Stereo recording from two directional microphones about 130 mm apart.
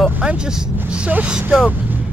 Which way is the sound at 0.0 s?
5° right (ahead or behind).